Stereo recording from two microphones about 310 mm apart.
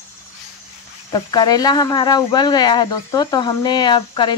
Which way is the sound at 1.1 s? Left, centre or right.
Centre.